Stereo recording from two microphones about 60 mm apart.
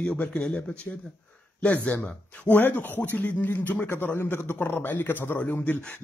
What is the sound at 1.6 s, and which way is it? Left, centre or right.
A man's voice, left.